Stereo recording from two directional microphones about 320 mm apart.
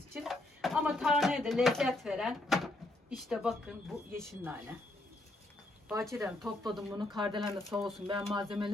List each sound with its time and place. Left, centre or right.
0.1 s a woman's voice: centre
5.9 s a woman's voice: centre
8.1 s speech: centre